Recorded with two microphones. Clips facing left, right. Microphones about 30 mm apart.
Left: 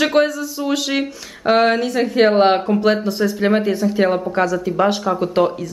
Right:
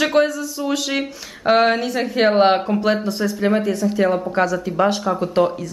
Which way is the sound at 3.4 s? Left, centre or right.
Left.